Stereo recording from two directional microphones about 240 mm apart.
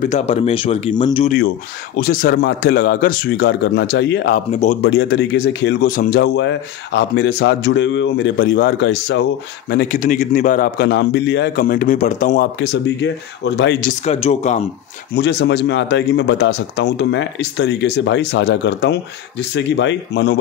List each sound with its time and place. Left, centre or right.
0.0 s speech: left
2.0 s a man's voice: left
4.5 s speech: left
4.8 s speech: left
9.7 s a man's voice: left
12.5 s speech: left
13.8 s speech: left
15.1 s speech: left